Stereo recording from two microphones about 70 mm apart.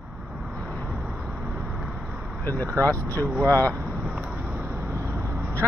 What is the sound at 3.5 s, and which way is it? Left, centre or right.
Speech, left.